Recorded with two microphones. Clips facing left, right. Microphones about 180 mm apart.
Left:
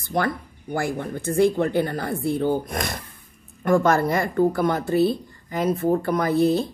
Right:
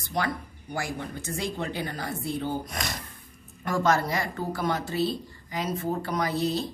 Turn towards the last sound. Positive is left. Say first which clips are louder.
# left 7 dB
turn(degrees=55)  # may be behind; listen again after turning